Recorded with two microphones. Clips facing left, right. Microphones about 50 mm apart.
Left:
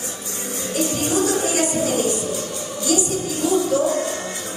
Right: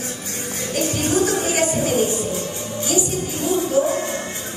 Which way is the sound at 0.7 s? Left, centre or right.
Right.